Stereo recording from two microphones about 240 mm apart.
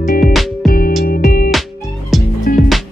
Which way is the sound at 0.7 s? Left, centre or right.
Left.